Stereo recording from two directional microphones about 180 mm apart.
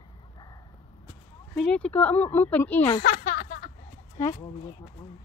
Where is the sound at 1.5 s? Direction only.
5° left (ahead or behind).